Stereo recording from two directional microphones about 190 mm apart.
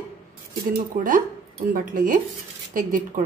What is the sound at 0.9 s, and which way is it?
A woman's voice, 45° right (ahead or behind).